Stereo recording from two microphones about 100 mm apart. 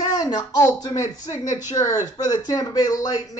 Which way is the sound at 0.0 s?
40° left (ahead or behind).